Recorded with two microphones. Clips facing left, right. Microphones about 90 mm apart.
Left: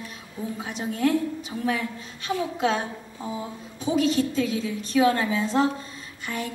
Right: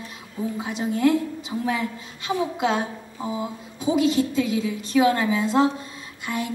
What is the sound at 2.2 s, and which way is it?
A woman's voice, 15° right (ahead or behind).